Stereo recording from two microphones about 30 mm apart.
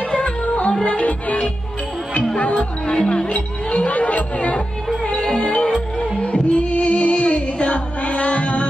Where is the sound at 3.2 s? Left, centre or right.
Left.